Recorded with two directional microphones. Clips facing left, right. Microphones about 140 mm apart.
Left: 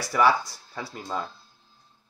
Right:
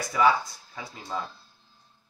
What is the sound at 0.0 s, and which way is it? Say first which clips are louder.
Speech: left 1 dB; 75° left (ahead or behind).